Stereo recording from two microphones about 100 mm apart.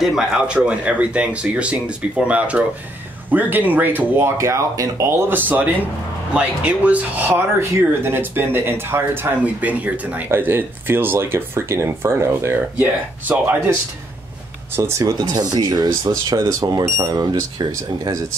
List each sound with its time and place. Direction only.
0.0 s speech: 5° right (ahead or behind)
4.4 s speech: 30° right (ahead or behind)
14.8 s speech: 30° right (ahead or behind)
15.1 s speech: 40° right (ahead or behind)
16.0 s speech: 30° right (ahead or behind)